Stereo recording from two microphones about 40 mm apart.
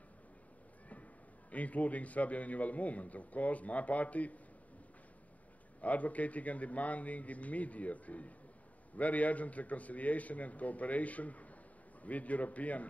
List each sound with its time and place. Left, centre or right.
1.5 s a man's voice: left
5.8 s a man's voice: left